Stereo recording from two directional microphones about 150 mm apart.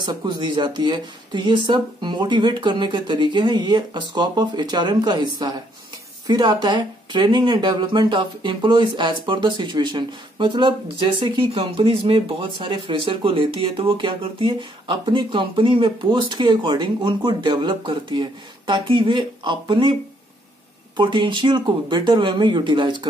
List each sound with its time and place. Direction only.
0.0 s speech: 30° right (ahead or behind)